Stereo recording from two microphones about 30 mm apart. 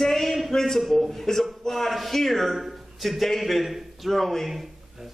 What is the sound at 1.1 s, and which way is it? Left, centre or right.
A man's voice, centre.